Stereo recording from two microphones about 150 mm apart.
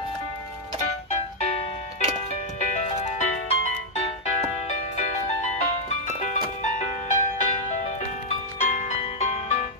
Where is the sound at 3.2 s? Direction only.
45° left (ahead or behind).